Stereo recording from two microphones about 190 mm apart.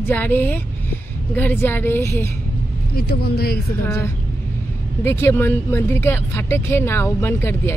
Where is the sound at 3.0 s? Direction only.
55° left (ahead or behind).